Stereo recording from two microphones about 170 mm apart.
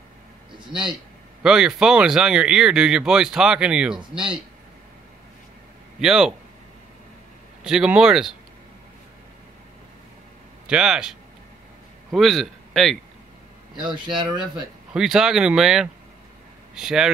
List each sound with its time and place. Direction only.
0.7 s speech: 30° right (ahead or behind)
1.4 s speech: 5° right (ahead or behind)
5.9 s speech: 5° right (ahead or behind)
7.6 s speech: 5° right (ahead or behind)
10.7 s a man's voice: 5° right (ahead or behind)
13.7 s speech: 25° right (ahead or behind)
14.4 s speech: 5° right (ahead or behind)